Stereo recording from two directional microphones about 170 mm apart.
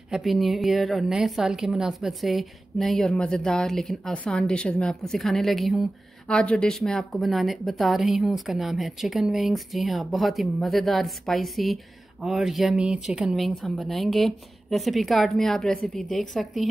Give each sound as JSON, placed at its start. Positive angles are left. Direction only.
{"t": 0.1, "sound": "a woman's voice", "side_deg": 0}